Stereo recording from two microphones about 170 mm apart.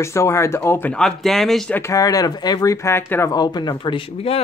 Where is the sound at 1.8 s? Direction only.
20° left (ahead or behind).